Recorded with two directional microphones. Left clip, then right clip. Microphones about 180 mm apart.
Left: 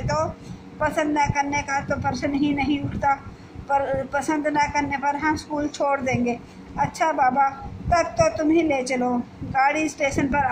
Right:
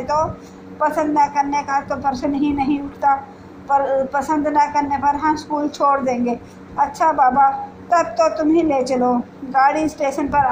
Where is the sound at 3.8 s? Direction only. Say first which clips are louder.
Right 6 dB; 25° left (ahead or behind).